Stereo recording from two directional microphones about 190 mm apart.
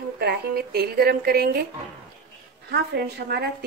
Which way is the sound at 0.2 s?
55° right (ahead or behind).